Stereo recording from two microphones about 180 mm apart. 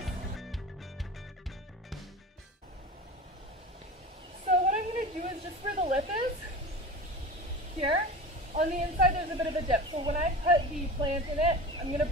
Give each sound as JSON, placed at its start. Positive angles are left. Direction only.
{"t": 0.0, "sound": "music", "side_deg": 0}
{"t": 4.5, "sound": "a sound", "side_deg": -45}
{"t": 8.5, "sound": "a woman's voice", "side_deg": -40}
{"t": 9.3, "sound": "a woman's voice", "side_deg": -30}